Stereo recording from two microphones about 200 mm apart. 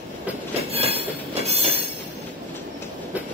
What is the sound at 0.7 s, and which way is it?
Train, 30° right (ahead or behind).